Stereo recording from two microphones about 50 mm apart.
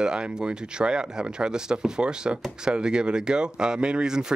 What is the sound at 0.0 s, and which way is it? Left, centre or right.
Speech, centre.